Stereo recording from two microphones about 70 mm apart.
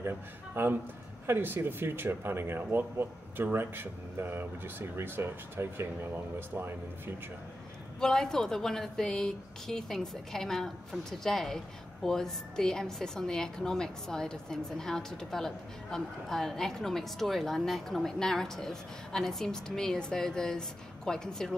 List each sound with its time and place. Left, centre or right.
0.6 s speech: right
8.0 s speech: centre